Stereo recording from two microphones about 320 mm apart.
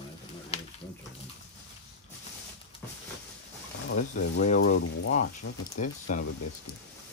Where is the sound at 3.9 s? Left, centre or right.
Left.